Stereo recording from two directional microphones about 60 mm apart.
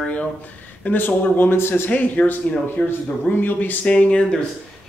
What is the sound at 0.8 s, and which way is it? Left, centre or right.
Speech, left.